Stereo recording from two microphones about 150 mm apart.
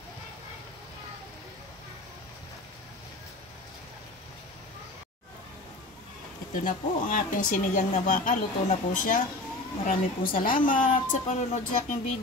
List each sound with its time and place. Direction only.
6.6 s speech: 60° left (ahead or behind)